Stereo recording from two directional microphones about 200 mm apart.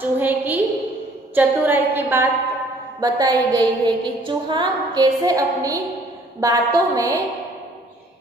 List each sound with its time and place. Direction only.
0.0 s a sound: 10° right (ahead or behind)
1.3 s a woman's voice: 10° right (ahead or behind)
3.0 s music: 20° right (ahead or behind)
6.4 s a woman's voice: 15° right (ahead or behind)